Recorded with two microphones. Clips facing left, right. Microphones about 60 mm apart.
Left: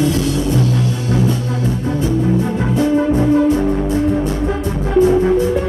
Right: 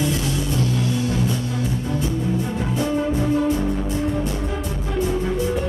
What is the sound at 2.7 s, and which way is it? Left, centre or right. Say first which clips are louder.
Music: left 8 dB; left.